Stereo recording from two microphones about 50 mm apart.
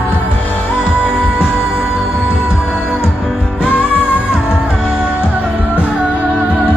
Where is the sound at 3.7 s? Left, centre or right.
Left.